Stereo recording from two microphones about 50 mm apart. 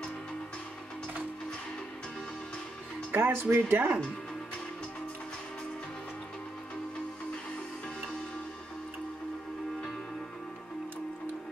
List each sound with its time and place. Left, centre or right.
3.1 s speech: right